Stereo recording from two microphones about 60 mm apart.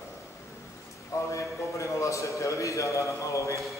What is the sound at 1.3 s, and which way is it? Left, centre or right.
A man's voice, left.